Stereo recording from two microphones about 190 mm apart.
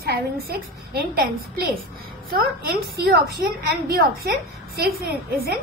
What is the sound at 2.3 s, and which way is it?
A woman's voice, 50° right (ahead or behind).